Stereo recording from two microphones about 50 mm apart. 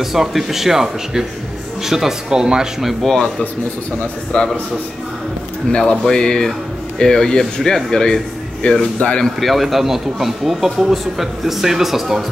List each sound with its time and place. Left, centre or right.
0.0 s speech: centre
3.0 s a man's voice: centre
5.7 s speech: centre
8.6 s a man's voice: left
9.2 s speech: centre